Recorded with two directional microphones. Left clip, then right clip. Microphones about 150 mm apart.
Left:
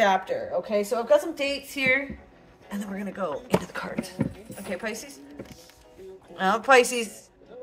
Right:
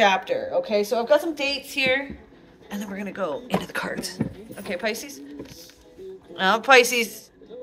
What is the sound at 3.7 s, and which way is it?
Speech, 20° right (ahead or behind).